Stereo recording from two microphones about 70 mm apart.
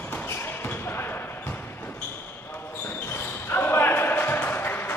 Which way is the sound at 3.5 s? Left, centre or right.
Left.